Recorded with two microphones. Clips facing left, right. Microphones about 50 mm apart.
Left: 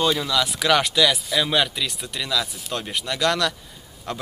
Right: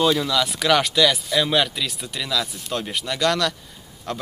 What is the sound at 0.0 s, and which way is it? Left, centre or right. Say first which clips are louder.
Speech: right 2 dB; centre.